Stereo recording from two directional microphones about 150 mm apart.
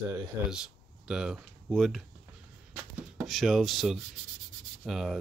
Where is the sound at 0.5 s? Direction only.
5° right (ahead or behind).